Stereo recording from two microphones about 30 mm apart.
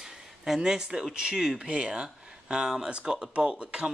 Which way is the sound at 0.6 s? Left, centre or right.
Right.